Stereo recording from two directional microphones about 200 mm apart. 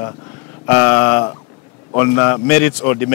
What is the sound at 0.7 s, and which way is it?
Speech, 10° left (ahead or behind).